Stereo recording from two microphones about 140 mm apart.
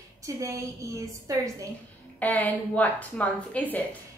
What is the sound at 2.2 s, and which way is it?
A woman's voice, 10° left (ahead or behind).